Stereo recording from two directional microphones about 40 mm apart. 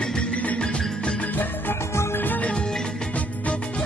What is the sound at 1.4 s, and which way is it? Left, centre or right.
Music, left.